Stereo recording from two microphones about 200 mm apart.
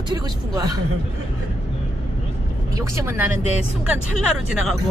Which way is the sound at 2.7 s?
15° right (ahead or behind).